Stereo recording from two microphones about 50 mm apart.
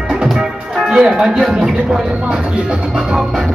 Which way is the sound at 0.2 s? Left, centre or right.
Centre.